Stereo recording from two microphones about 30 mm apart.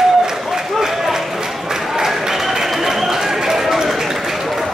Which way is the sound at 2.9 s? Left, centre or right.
Centre.